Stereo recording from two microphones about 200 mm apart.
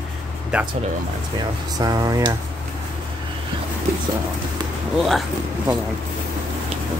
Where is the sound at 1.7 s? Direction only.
20° right (ahead or behind).